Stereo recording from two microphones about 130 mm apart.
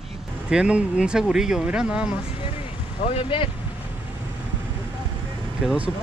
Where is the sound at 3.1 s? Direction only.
40° left (ahead or behind).